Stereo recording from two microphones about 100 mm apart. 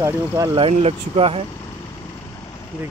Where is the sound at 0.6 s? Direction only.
85° right.